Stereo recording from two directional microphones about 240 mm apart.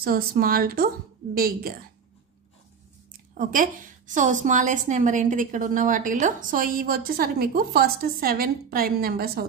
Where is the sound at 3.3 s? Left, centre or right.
Right.